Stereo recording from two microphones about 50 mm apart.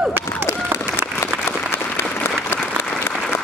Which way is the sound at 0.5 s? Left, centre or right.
Left.